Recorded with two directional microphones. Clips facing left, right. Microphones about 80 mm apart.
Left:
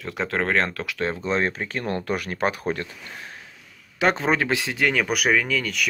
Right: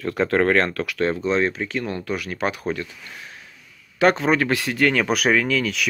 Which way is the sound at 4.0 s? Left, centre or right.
Left.